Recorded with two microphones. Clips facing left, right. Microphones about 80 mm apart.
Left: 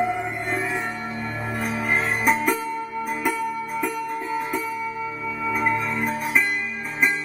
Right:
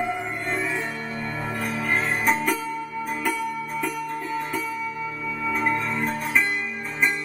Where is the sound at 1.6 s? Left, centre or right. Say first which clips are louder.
Left 2 dB; centre.